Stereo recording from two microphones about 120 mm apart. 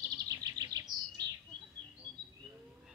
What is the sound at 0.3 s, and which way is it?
Chirp, 30° right (ahead or behind).